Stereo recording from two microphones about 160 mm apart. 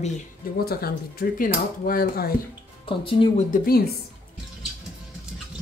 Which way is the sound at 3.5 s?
70° left (ahead or behind).